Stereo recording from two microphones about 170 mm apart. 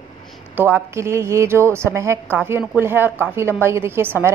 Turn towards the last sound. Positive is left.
turn(degrees=-15)  # may be behind; listen again after turning